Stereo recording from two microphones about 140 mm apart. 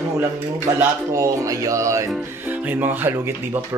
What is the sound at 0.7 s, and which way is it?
Speech, 20° right (ahead or behind).